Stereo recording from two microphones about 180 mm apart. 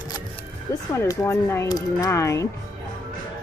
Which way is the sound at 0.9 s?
15° left (ahead or behind).